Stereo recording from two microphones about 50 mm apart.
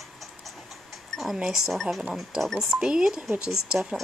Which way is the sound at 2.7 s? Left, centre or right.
Centre.